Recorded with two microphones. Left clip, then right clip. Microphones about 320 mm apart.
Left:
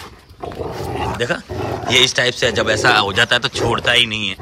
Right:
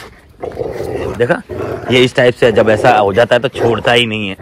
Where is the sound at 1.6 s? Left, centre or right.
Centre.